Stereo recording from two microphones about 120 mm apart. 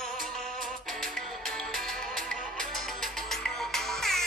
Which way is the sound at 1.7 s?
5° left (ahead or behind).